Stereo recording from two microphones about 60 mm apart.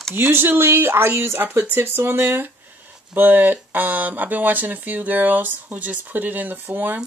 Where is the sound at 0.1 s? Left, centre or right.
Right.